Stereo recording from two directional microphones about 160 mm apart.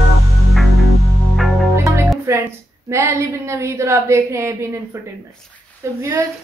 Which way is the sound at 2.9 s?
15° right (ahead or behind).